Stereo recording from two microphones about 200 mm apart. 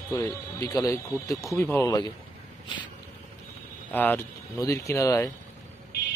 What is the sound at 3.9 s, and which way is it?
Speech, 10° left (ahead or behind).